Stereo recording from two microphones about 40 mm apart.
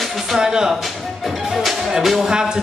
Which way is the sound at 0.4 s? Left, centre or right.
Centre.